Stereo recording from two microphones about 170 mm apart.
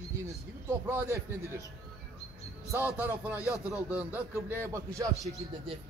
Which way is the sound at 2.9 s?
10° right (ahead or behind).